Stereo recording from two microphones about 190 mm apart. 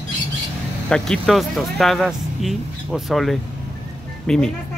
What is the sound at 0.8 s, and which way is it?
Speech, 5° left (ahead or behind).